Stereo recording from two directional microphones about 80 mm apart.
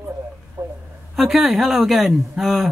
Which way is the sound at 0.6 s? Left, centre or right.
Right.